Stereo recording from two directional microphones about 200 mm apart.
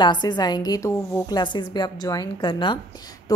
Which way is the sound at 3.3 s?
20° left (ahead or behind).